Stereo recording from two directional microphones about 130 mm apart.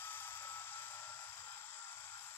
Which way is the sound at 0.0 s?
15° left (ahead or behind).